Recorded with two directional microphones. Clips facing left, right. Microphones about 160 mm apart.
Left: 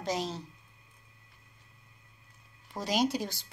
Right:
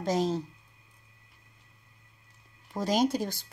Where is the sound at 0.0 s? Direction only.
45° right (ahead or behind).